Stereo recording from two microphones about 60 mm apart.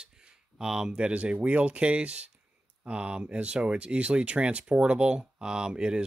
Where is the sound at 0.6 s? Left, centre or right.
Centre.